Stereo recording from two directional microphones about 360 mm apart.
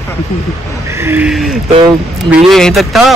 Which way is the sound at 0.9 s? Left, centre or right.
Centre.